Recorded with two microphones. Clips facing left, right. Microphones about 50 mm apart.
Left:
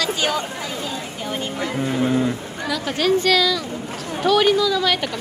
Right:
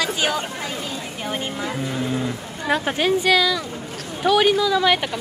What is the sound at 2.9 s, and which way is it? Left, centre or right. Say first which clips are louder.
Speech: left 2 dB; centre.